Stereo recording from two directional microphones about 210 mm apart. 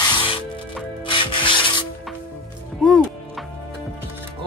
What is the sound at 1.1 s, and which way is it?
Rub, 25° left (ahead or behind).